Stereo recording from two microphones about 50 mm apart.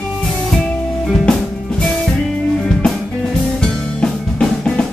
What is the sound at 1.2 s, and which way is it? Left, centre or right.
Music, centre.